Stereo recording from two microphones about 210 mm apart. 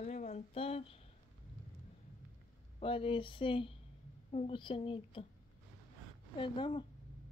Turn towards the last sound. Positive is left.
turn(degrees=25)  # may be behind; listen again after turning